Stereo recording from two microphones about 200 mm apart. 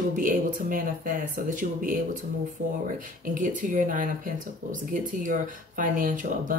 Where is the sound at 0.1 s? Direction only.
40° right (ahead or behind).